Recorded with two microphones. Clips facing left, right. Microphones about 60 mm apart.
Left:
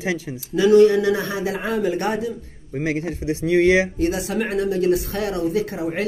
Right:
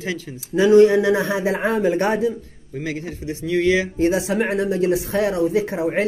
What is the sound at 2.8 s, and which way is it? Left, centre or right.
Speech, left.